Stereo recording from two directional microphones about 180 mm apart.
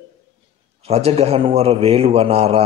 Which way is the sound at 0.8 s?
35° right (ahead or behind).